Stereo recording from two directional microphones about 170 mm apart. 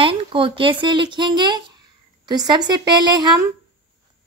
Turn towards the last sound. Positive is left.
turn(degrees=-25)  # may be behind; listen again after turning